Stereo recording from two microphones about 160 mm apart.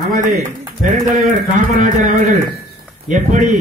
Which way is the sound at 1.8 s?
55° right (ahead or behind).